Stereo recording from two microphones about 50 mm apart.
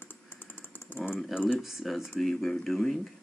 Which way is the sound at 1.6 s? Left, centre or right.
Centre.